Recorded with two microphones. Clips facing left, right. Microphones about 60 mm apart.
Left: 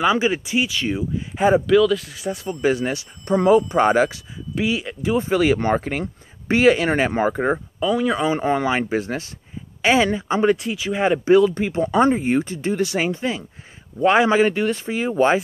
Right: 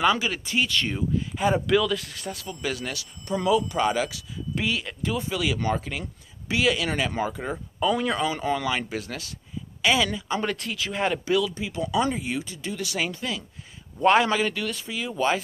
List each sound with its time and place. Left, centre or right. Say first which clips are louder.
0.2 s speech: left 6 dB; centre
1.3 s speech: left 8 dB; left
1.7 s speech: left 7 dB; centre
2.3 s speech: left 12 dB; left
4.6 s speech: left 5 dB; centre
5.1 s speech: left 10 dB; left
7.8 s speech: left 3 dB; centre
8.2 s speech: left 6 dB; left
11.2 s speech: left 10 dB; left